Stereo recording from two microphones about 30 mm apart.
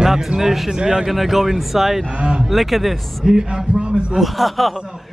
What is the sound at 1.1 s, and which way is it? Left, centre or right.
A man's voice, centre.